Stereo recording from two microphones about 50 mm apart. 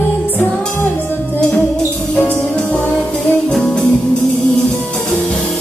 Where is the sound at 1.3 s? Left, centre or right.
Centre.